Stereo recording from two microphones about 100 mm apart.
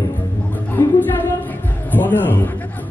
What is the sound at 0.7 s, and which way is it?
Music, 20° left (ahead or behind).